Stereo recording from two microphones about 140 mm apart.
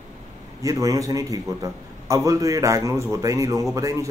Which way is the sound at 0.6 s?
25° right (ahead or behind).